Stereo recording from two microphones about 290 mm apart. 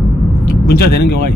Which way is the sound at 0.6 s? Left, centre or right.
Left.